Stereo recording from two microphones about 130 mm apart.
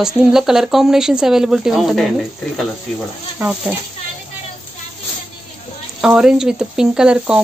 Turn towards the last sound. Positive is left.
turn(degrees=-5)  # may be behind; listen again after turning